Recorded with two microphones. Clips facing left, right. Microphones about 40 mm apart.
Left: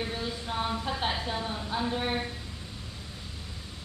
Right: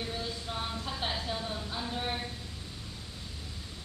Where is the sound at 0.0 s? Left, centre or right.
Centre.